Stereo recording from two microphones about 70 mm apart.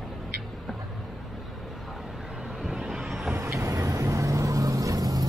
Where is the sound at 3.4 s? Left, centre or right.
Right.